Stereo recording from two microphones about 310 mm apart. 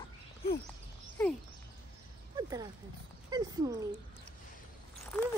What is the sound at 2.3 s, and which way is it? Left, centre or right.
Speech, centre.